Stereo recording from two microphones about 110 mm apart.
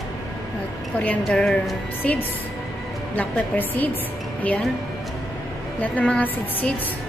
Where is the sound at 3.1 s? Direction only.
15° left (ahead or behind).